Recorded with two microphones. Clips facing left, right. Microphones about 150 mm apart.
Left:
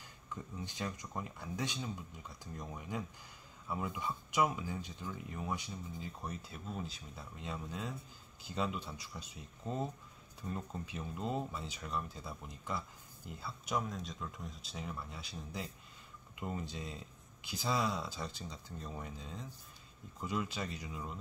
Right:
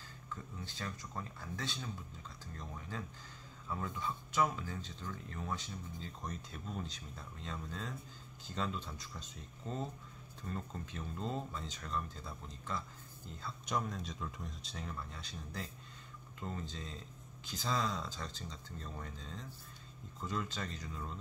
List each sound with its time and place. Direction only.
0.3 s speech: 15° left (ahead or behind)